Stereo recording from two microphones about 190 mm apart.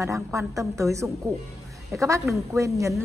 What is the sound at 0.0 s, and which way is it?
A woman's voice, 15° right (ahead or behind).